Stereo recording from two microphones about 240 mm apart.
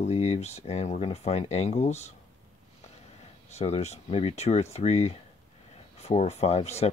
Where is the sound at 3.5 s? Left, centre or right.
Left.